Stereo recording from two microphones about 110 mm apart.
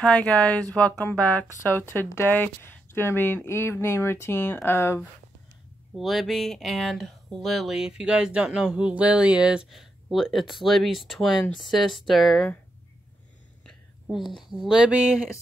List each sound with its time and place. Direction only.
0.0 s speech: 10° left (ahead or behind)
5.9 s speech: centre (ahead or behind)
14.5 s a sound: 5° right (ahead or behind)